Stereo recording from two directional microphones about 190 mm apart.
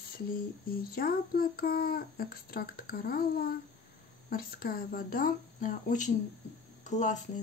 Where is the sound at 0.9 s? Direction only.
50° left (ahead or behind).